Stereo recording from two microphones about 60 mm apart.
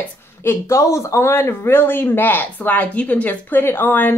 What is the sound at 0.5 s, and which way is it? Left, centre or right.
Speech, left.